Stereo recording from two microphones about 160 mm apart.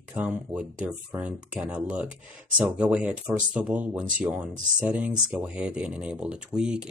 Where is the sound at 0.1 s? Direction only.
10° right (ahead or behind).